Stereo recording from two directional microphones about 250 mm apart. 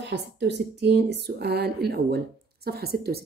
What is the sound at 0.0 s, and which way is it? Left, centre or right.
A woman's voice, right.